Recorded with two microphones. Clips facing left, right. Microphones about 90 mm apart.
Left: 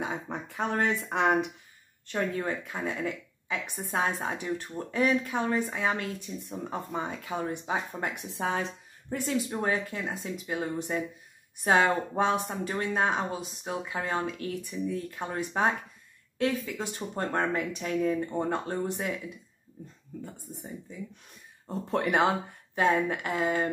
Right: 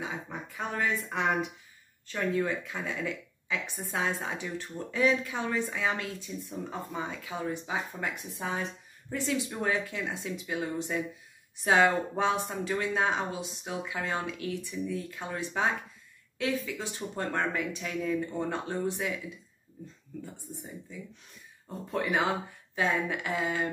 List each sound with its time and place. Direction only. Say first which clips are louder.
0.0 s a sound: left 4 dB; 50° left (ahead or behind)
0.7 s speech: left 3 dB; 65° left (ahead or behind)
1.1 s speech: left 4 dB; 45° left (ahead or behind)
8.1 s speech: left 4 dB; 70° left (ahead or behind)
9.2 s speech: left 1 dB; 40° left (ahead or behind)
21.9 s speech: left 4 dB; 60° left (ahead or behind)
22.8 s speech: left 4 dB; 50° left (ahead or behind)